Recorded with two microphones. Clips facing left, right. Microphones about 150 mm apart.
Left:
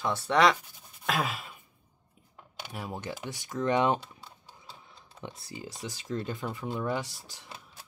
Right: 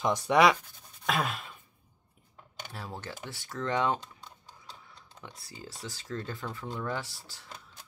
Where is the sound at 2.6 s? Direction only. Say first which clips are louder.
Left 3 dB; 15° left (ahead or behind).